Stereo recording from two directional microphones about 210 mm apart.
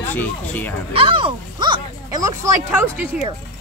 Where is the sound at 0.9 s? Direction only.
25° right (ahead or behind).